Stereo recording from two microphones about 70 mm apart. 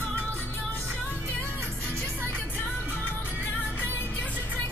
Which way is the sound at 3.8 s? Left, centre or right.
Left.